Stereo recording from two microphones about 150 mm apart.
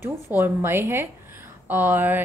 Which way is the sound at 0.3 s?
15° right (ahead or behind).